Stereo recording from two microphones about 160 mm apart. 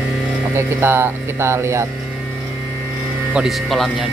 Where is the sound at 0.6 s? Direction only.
15° right (ahead or behind).